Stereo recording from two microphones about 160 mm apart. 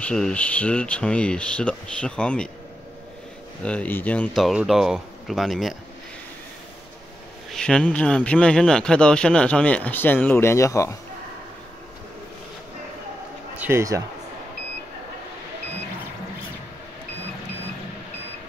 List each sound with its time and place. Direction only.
0.0 s speech: 5° left (ahead or behind)
3.6 s speech: 10° left (ahead or behind)
4.4 s speech: centre (ahead or behind)
7.5 s speech: 5° left (ahead or behind)
13.6 s speech: 15° right (ahead or behind)